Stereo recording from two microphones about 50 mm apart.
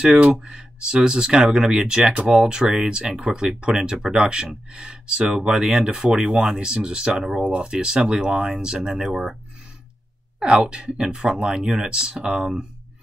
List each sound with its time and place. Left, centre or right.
0.0 s speech: centre
10.4 s speech: right